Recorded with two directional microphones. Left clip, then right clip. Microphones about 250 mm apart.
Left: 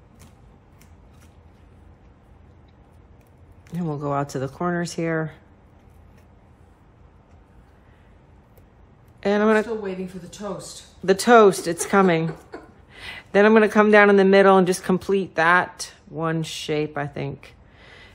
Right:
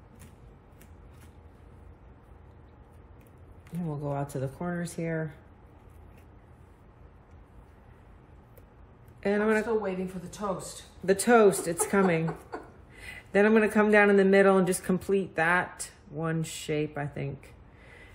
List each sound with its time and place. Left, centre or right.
3.8 s speech: left
4.1 s speech: centre
9.2 s speech: centre
10.4 s speech: centre
11.1 s speech: centre